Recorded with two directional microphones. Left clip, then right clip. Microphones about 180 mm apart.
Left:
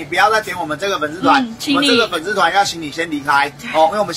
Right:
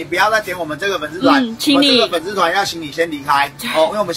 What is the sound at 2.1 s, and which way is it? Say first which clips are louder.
A man's voice: left 1 dB; 15° left (ahead or behind).